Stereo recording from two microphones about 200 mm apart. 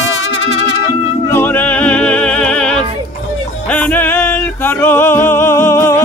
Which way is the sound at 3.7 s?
5° left (ahead or behind).